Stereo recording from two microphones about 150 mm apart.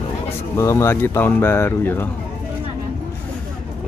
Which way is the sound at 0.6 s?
20° left (ahead or behind).